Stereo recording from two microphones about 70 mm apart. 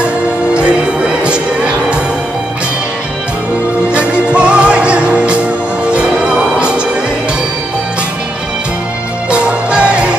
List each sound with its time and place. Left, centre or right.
0.6 s music: centre
3.9 s music: centre
9.3 s music: centre